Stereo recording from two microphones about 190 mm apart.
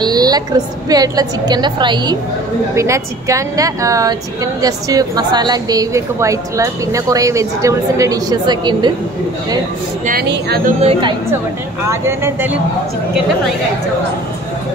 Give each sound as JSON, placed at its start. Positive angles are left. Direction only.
{"t": 0.0, "sound": "a woman's voice", "side_deg": -20}
{"t": 10.0, "sound": "speech", "side_deg": -60}
{"t": 10.6, "sound": "speech", "side_deg": -30}
{"t": 11.9, "sound": "speech", "side_deg": -15}